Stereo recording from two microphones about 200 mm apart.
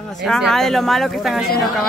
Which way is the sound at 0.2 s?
Centre (ahead or behind).